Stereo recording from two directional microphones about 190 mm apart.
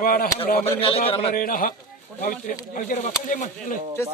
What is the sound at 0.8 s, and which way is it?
Speech, 30° left (ahead or behind).